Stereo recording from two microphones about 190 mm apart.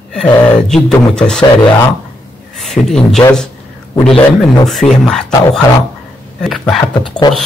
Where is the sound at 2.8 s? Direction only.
Centre (ahead or behind).